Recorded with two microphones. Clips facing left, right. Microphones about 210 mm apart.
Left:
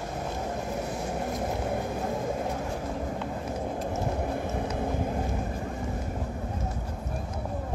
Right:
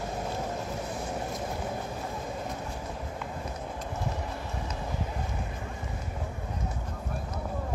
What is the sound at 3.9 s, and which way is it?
Vehicle, 50° left (ahead or behind).